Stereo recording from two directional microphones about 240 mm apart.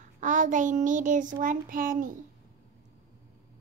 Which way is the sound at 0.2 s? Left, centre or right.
Right.